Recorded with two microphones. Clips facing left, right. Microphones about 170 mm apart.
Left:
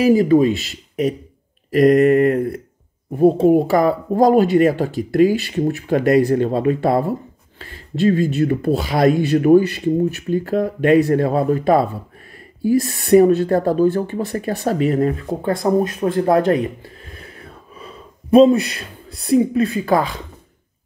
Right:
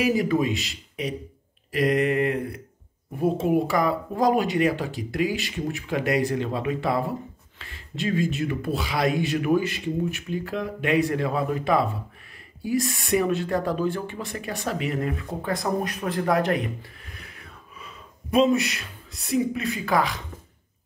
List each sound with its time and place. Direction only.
0.0 s speech: 30° left (ahead or behind)
1.7 s mantra: 45° left (ahead or behind)
3.1 s speech: 35° left (ahead or behind)
15.8 s speech: 25° left (ahead or behind)
17.0 s gasp: 30° left (ahead or behind)